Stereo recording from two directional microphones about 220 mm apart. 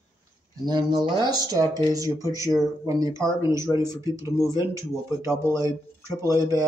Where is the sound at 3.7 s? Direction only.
15° left (ahead or behind).